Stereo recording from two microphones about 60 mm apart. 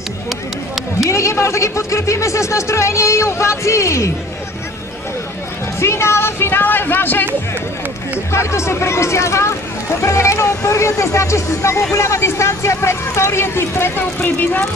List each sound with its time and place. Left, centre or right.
1.0 s speech: left
5.8 s a sound: left
8.3 s speech: left